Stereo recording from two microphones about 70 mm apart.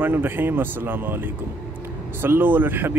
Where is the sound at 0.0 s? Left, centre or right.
Right.